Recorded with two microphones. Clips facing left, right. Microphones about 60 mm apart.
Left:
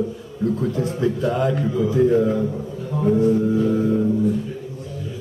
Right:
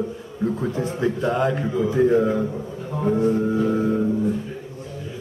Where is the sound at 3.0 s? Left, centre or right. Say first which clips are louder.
Left 2 dB; centre.